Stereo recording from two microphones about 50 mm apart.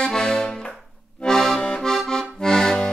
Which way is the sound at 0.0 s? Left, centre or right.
Centre.